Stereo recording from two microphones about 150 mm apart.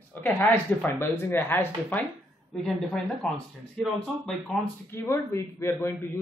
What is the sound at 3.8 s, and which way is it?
Speech, 5° left (ahead or behind).